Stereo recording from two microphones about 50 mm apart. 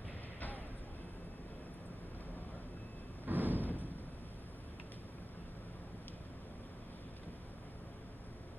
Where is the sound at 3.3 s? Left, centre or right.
Right.